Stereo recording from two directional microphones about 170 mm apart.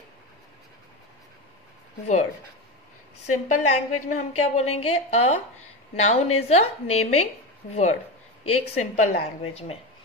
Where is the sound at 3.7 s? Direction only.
45° left (ahead or behind).